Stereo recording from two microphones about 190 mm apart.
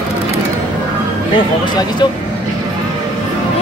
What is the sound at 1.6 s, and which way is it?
Speech, 20° left (ahead or behind).